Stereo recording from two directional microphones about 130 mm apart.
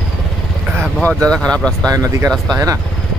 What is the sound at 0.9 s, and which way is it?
Speech, 5° left (ahead or behind).